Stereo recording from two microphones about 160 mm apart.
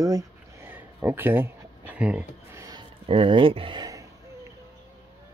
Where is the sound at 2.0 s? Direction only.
10° right (ahead or behind).